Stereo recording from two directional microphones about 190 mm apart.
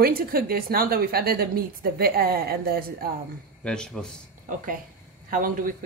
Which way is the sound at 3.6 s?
5° left (ahead or behind).